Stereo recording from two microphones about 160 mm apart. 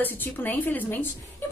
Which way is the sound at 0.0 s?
10° left (ahead or behind).